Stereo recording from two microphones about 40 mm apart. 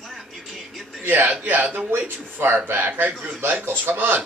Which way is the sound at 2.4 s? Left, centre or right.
Right.